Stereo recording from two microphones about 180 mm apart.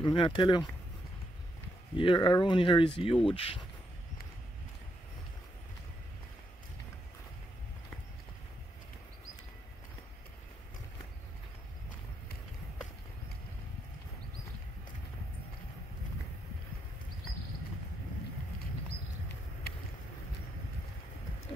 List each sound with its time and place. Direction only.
0.0 s speech: 25° left (ahead or behind)
2.0 s speech: 30° left (ahead or behind)